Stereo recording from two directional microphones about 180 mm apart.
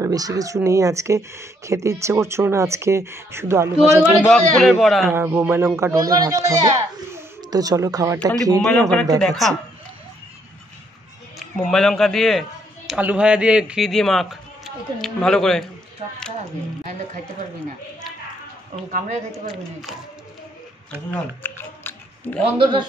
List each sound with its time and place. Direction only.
0.0 s speech: 20° right (ahead or behind)
4.3 s a man's voice: 5° left (ahead or behind)
5.0 s a man's voice: 15° right (ahead or behind)
8.6 s a man's voice: 5° left (ahead or behind)
11.3 s speech: centre (ahead or behind)
18.9 s speech: 45° right (ahead or behind)
21.1 s a sound: 10° left (ahead or behind)
22.6 s a man's voice: 25° right (ahead or behind)